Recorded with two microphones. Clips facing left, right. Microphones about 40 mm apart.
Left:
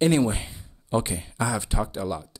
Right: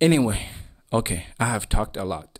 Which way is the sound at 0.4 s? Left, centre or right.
Right.